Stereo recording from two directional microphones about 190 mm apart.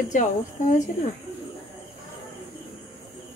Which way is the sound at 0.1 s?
40° left (ahead or behind).